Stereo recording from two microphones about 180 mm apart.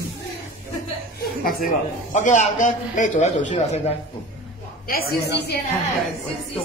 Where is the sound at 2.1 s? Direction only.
45° left (ahead or behind).